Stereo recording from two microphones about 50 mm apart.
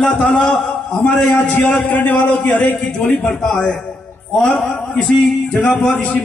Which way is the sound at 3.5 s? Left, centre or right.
Centre.